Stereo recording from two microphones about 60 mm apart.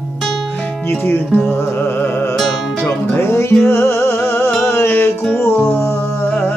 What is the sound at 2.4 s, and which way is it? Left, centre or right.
Music, centre.